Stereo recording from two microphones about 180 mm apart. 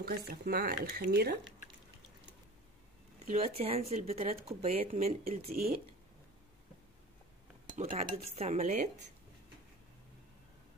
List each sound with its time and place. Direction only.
0.0 s speech: 55° right (ahead or behind)
3.3 s speech: 35° right (ahead or behind)
5.5 s speech: 55° right (ahead or behind)
7.7 s speech: 45° right (ahead or behind)